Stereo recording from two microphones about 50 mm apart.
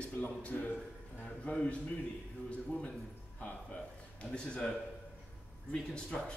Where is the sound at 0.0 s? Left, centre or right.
Left.